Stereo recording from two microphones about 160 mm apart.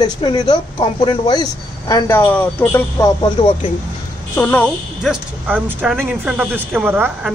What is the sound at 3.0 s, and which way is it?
Speech, 30° left (ahead or behind).